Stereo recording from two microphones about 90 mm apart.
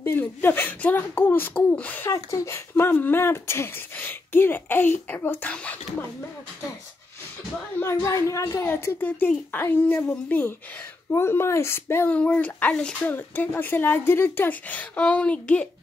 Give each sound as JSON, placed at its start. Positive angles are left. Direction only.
{"t": 0.0, "sound": "speech", "side_deg": 25}
{"t": 2.1, "sound": "speech", "side_deg": 35}
{"t": 2.5, "sound": "speech", "side_deg": 25}
{"t": 7.8, "sound": "speech", "side_deg": 35}
{"t": 8.6, "sound": "speech", "side_deg": 20}
{"t": 12.1, "sound": "speech", "side_deg": 15}